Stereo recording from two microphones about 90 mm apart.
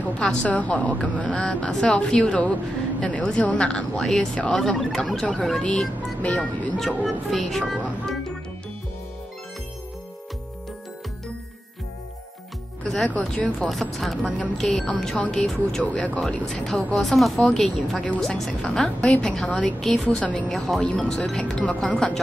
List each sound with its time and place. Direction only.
0.2 s speech: 10° left (ahead or behind)
7.0 s speech: centre (ahead or behind)
12.8 s speech: 5° left (ahead or behind)
18.9 s speech: 15° left (ahead or behind)